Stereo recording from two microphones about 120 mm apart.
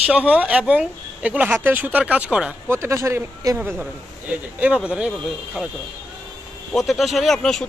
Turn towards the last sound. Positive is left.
turn(degrees=5)  # may be behind; listen again after turning